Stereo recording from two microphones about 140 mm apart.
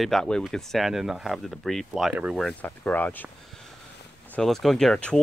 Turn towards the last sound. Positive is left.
turn(degrees=5)  # may be behind; listen again after turning